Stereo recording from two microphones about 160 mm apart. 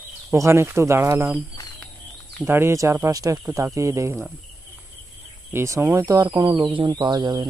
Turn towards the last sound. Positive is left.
turn(degrees=-25)  # may be behind; listen again after turning